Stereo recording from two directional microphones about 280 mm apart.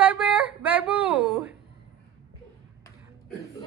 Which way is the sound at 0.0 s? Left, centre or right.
Centre.